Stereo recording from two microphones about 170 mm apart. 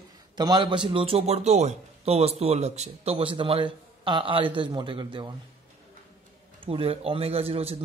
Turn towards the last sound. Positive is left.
turn(degrees=-35)  # may be behind; listen again after turning